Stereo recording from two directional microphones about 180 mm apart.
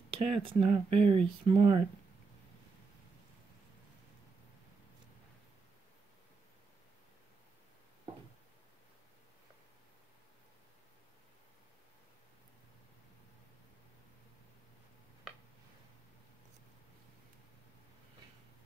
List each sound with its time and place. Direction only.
0.2 s speech: 30° right (ahead or behind)